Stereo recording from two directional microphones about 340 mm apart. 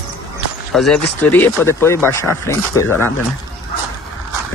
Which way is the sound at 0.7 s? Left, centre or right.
Centre.